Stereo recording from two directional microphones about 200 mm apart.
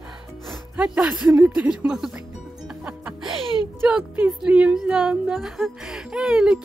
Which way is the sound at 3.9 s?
5° right (ahead or behind).